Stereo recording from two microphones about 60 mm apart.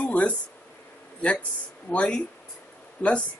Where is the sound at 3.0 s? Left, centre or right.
Left.